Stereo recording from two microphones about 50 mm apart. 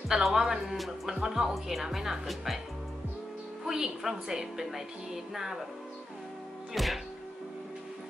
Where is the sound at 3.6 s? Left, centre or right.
Centre.